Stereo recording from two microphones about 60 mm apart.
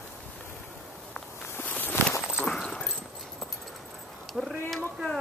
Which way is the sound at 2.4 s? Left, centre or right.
Centre.